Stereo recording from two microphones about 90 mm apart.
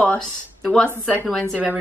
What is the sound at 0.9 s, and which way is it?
Speech, 20° left (ahead or behind).